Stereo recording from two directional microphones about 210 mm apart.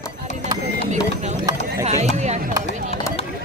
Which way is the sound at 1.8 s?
30° right (ahead or behind).